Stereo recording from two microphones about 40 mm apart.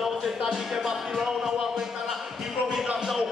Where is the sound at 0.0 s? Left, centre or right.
Centre.